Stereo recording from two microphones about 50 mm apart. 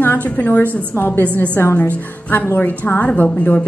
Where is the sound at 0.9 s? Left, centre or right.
Left.